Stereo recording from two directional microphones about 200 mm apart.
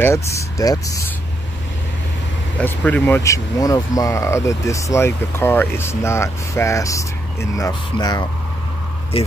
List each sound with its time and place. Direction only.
0.0 s speech: 15° left (ahead or behind)
2.5 s speech: 5° left (ahead or behind); by 9.3 s 30° left (ahead or behind)